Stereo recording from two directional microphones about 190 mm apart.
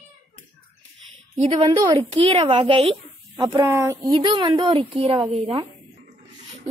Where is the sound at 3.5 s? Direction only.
15° right (ahead or behind).